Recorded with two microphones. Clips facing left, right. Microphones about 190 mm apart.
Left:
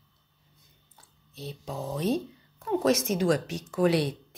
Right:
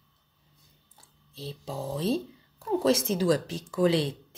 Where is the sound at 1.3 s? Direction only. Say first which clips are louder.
Even; 30° right (ahead or behind).